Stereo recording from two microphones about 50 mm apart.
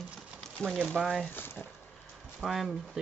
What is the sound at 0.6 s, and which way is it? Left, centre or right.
Speech, left.